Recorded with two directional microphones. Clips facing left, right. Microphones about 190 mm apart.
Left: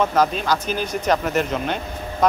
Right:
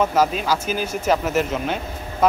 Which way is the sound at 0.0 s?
5° right (ahead or behind).